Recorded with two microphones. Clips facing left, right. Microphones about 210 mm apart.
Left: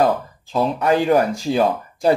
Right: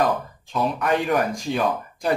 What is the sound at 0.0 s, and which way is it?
Speech, 30° left (ahead or behind).